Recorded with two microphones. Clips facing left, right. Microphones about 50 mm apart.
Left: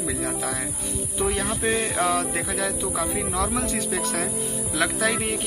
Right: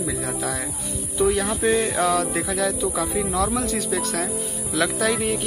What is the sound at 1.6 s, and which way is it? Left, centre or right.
Music, left.